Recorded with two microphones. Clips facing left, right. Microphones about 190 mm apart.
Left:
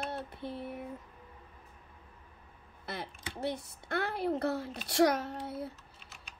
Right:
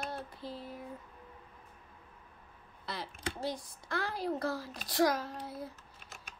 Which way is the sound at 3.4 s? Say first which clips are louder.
Left 4 dB; 65° left (ahead or behind).